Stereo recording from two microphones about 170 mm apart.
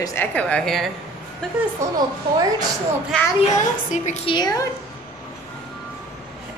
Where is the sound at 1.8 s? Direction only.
15° right (ahead or behind).